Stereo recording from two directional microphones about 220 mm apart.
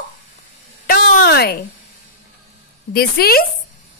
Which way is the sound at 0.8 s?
40° left (ahead or behind).